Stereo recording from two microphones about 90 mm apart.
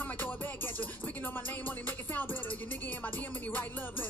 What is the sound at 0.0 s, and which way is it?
Music, 20° left (ahead or behind).